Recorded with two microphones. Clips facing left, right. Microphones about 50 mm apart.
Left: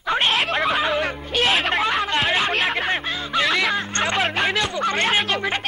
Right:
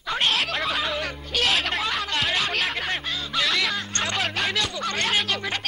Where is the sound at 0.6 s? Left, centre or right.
Left.